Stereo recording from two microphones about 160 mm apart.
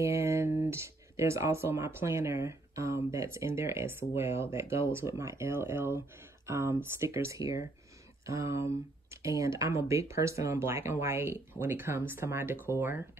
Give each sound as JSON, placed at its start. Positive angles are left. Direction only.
{"t": 0.0, "sound": "speech", "side_deg": -15}